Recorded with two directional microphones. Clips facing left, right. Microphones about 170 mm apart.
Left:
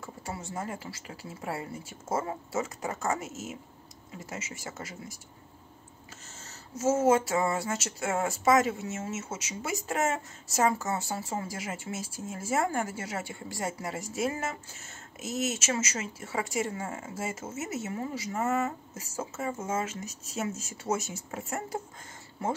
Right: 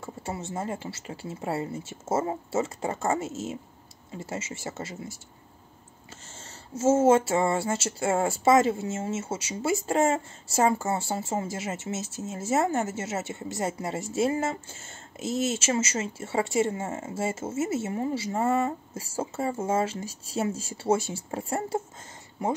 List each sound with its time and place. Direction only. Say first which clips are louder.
0.0 s speech: right 4 dB; 25° right (ahead or behind)
6.2 s speech: right 2 dB; 30° right (ahead or behind)
22.4 s speech: right 3 dB; 15° right (ahead or behind)